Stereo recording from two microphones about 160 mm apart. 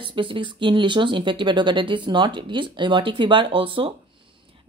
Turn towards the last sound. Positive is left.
turn(degrees=-35)  # may be behind; listen again after turning